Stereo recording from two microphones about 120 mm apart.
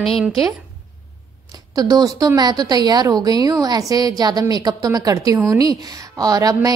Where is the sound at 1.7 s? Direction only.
30° right (ahead or behind).